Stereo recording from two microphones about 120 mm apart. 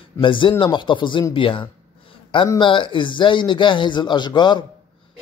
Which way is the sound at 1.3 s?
45° left (ahead or behind).